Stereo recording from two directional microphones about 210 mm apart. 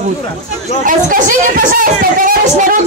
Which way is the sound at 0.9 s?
40° right (ahead or behind).